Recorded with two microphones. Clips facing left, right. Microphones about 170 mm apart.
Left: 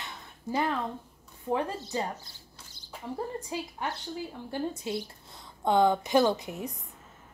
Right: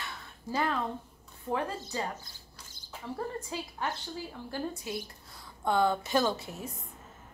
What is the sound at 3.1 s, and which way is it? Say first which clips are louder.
A woman's voice: left 2 dB; 15° left (ahead or behind).